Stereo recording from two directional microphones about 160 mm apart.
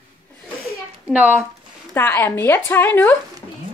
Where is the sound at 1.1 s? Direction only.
10° right (ahead or behind).